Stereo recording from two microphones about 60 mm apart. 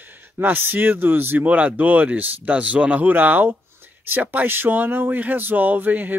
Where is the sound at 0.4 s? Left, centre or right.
Right.